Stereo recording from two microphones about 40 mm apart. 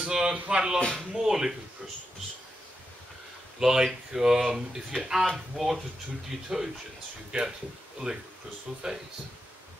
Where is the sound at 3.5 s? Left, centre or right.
Centre.